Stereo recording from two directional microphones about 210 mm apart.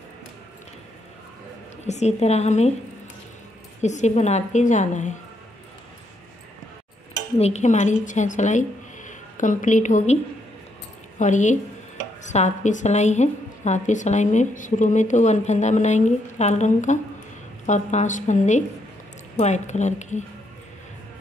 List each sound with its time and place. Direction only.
1.9 s a woman's voice: 30° left (ahead or behind)
3.8 s a woman's voice: 35° left (ahead or behind)
7.3 s speech: 30° left (ahead or behind)
11.1 s a woman's voice: 35° left (ahead or behind)